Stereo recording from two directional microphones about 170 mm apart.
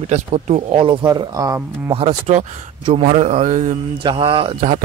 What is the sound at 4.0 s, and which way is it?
Speech, 30° right (ahead or behind).